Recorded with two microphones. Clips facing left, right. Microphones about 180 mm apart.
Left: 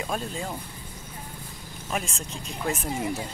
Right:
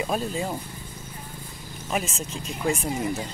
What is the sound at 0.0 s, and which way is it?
Speech, 10° right (ahead or behind).